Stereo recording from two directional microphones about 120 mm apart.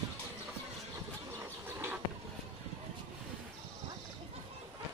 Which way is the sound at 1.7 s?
20° right (ahead or behind).